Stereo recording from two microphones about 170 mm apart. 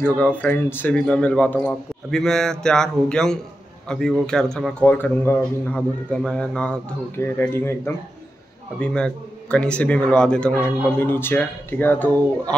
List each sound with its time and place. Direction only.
0.0 s a man's voice: 10° left (ahead or behind)